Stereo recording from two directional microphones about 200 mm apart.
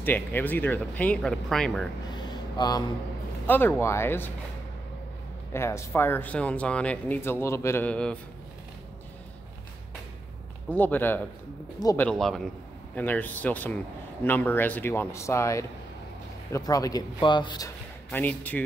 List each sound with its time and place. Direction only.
0.0 s speech: 10° left (ahead or behind)
2.1 s a sound: 20° left (ahead or behind)
3.4 s speech: 10° left (ahead or behind)
5.5 s speech: 15° left (ahead or behind)
10.7 s speech: 10° left (ahead or behind)
12.1 s a man's voice: centre (ahead or behind)